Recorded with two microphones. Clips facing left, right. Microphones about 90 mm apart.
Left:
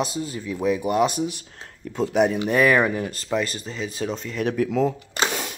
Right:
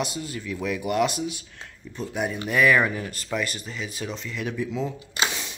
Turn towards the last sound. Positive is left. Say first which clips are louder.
# left 3 dB
turn(degrees=45)  # may be behind; listen again after turning